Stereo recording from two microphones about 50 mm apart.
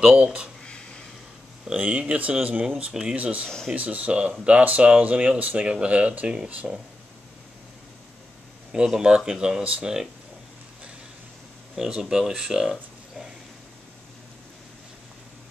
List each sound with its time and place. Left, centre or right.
0.0 s speech: right
0.7 s a sound: centre
1.8 s speech: right
3.2 s speech: right
3.4 s speech: centre
3.7 s speech: right
8.7 s speech: centre
11.9 s speech: centre